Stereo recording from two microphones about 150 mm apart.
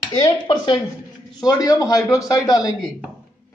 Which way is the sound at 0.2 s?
30° left (ahead or behind).